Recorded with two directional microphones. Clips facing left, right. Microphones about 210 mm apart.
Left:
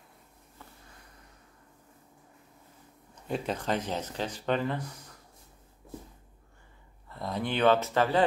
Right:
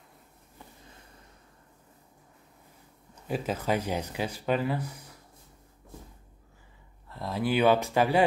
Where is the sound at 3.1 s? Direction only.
5° right (ahead or behind).